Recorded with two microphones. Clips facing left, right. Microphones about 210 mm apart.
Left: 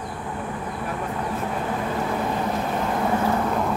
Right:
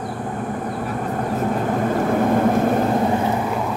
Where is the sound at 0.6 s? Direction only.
45° right (ahead or behind).